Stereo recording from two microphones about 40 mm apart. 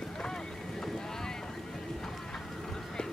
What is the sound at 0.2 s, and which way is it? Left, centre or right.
Boat, centre.